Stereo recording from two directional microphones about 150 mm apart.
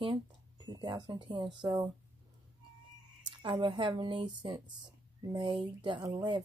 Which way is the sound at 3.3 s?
30° right (ahead or behind).